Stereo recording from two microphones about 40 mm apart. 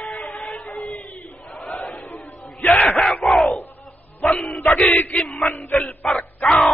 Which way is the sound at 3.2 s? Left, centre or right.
Centre.